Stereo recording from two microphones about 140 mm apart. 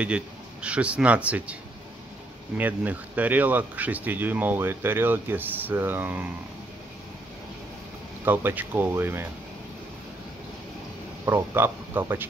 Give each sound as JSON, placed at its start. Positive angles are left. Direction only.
{"t": 0.0, "sound": "speech", "side_deg": -10}
{"t": 8.3, "sound": "speech", "side_deg": -15}
{"t": 11.2, "sound": "speech", "side_deg": -15}